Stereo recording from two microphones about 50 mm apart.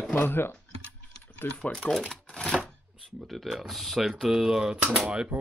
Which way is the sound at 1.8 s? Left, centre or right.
Centre.